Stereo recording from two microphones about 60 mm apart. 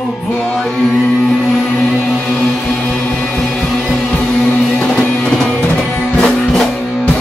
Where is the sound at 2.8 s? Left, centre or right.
Centre.